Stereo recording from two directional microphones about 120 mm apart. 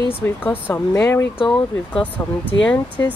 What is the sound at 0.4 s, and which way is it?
Speech, 15° left (ahead or behind).